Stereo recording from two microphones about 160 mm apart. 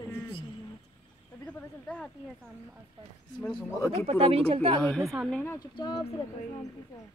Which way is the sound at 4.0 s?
40° right (ahead or behind).